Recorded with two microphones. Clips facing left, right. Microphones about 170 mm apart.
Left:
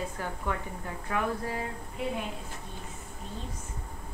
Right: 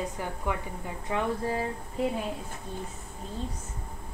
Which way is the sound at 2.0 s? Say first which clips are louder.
Right 5 dB; 40° right (ahead or behind).